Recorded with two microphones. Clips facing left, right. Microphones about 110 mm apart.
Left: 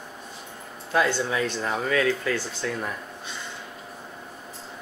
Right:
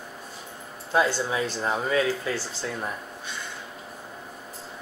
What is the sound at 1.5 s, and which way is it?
Speech, 30° right (ahead or behind).